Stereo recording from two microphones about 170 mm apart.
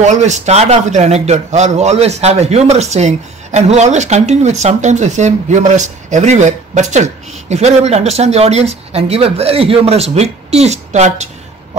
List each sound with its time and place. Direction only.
0.0 s a man's voice: 45° right (ahead or behind)